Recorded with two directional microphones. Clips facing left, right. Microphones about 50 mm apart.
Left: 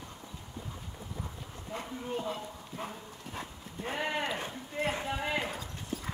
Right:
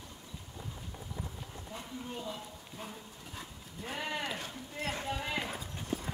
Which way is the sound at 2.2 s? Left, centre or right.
Left.